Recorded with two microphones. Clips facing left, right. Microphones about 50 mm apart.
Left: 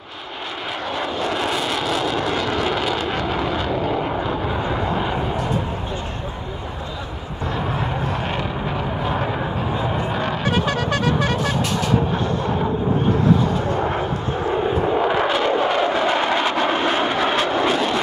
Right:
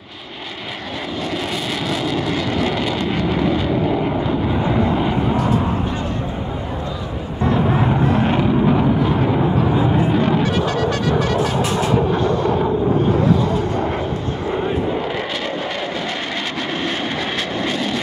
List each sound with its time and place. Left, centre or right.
1.2 s vehicle: centre
7.8 s vehicle: centre
10.1 s music: centre
10.6 s music: left
11.6 s vehicle: centre
12.1 s artillery fire: centre
13.7 s vehicle: centre
14.9 s a sound: centre